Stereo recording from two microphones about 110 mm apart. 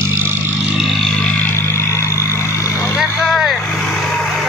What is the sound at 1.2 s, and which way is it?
Vehicle, 20° left (ahead or behind).